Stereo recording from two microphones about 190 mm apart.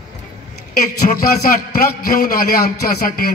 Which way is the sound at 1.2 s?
50° left (ahead or behind).